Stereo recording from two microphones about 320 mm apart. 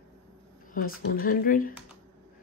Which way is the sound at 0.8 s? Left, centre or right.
Left.